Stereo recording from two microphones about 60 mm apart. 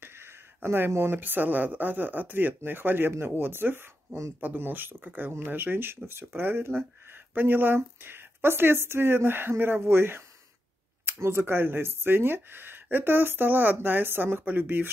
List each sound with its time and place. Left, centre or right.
0.0 s speech: right